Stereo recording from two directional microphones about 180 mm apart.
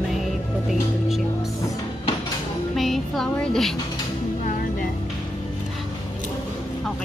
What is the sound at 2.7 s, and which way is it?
A woman's voice, centre (ahead or behind).